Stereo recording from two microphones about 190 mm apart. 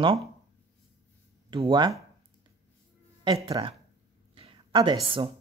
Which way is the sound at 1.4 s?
25° right (ahead or behind).